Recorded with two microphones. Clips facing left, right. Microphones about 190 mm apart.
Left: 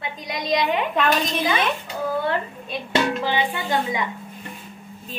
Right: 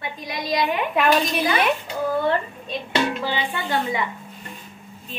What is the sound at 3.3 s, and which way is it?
Music, 15° left (ahead or behind).